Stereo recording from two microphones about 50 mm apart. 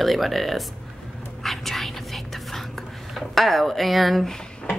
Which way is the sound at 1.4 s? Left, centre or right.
Centre.